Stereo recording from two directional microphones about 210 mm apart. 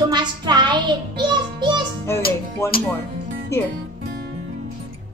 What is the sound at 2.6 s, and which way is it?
Speech, 15° left (ahead or behind).